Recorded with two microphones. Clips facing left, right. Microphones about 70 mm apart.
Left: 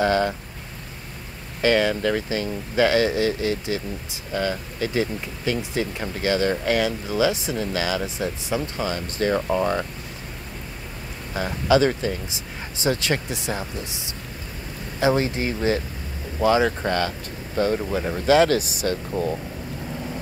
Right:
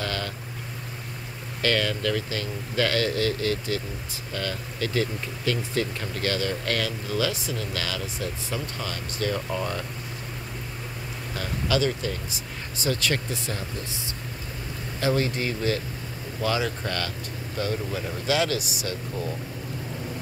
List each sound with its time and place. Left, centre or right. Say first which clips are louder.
0.0 s speech: left 11 dB; left
1.6 s speech: left 6 dB; centre
11.3 s speech: left 7 dB; left